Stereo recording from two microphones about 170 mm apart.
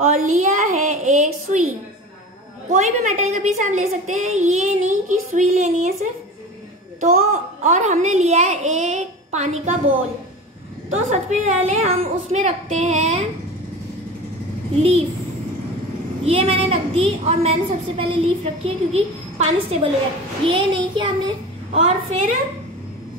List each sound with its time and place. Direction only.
0.0 s a woman's voice: 45° right (ahead or behind)
2.7 s a woman's voice: 45° right (ahead or behind)
7.0 s a woman's voice: 40° right (ahead or behind)
10.9 s a woman's voice: 45° right (ahead or behind)
14.8 s a woman's voice: 35° right (ahead or behind)
16.3 s a woman's voice: 35° right (ahead or behind)
20.4 s a child's voice: 30° right (ahead or behind)